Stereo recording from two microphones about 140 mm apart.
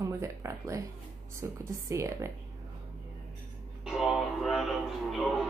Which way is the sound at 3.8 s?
Centre (ahead or behind).